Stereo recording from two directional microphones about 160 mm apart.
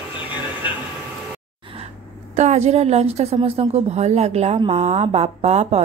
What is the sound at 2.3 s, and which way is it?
A woman's voice, 45° right (ahead or behind).